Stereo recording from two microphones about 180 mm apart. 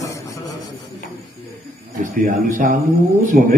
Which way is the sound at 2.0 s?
45° right (ahead or behind).